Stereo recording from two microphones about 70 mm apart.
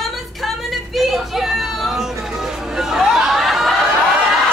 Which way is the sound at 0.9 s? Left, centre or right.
Centre.